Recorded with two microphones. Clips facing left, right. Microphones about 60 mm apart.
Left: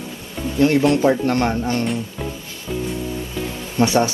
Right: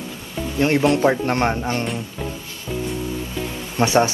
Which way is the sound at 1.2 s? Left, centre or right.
Right.